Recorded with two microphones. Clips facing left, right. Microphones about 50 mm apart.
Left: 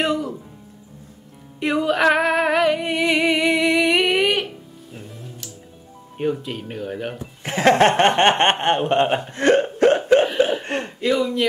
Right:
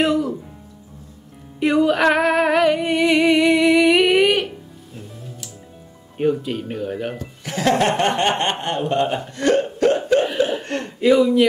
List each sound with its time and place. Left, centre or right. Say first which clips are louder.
0.0 s music: right 3 dB; centre
1.6 s music: right 2 dB; centre
6.1 s speech: right 4 dB; centre
7.4 s speech: left 3 dB; left
9.2 s hiccup: left 1 dB; left
10.6 s a sound: even; left
11.0 s speech: right 7 dB; centre